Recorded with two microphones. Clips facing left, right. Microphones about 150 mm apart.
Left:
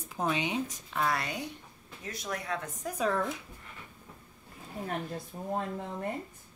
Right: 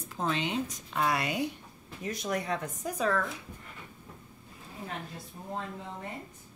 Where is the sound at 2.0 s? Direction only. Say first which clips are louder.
Right 5 dB; 20° right (ahead or behind).